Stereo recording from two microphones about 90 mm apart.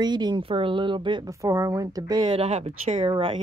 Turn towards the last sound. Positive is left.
turn(degrees=-80)